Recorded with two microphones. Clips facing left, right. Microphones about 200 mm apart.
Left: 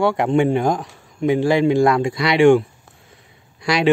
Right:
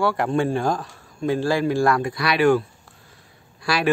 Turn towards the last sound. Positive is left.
turn(degrees=20)  # may be behind; listen again after turning